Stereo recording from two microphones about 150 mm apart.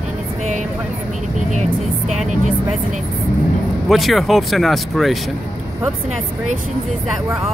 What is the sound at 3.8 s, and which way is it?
Speech, centre (ahead or behind).